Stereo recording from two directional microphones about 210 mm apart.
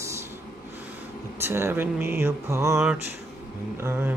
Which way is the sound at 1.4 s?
10° right (ahead or behind).